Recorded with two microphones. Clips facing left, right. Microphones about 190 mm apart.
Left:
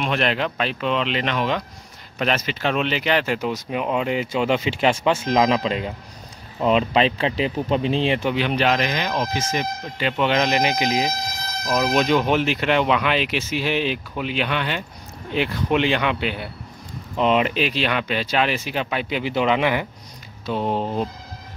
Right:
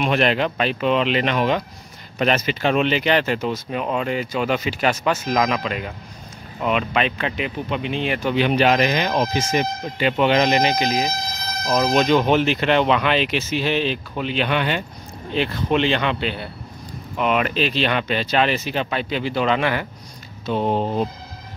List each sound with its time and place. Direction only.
0.0 s speech: 5° right (ahead or behind); by 8.3 s 25° left (ahead or behind)
8.4 s speech: 5° right (ahead or behind); by 11.1 s 15° left (ahead or behind)
11.7 s speech: 5° left (ahead or behind)
14.5 s speech: 5° right (ahead or behind)
15.3 s speech: 15° left (ahead or behind)
17.2 s speech: 25° left (ahead or behind)
20.4 s speech: centre (ahead or behind)